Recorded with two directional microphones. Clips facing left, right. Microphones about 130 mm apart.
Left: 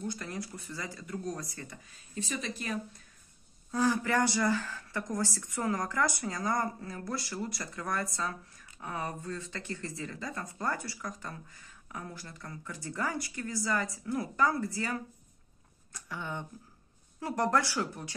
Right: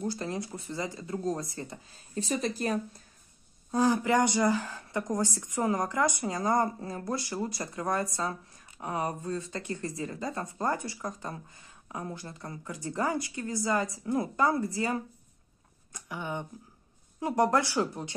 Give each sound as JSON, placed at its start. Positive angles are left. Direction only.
{"t": 0.0, "sound": "speech", "side_deg": -30}
{"t": 3.7, "sound": "speech", "side_deg": -20}